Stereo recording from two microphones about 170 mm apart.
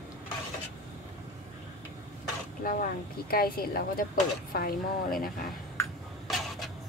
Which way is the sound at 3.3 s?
60° left (ahead or behind).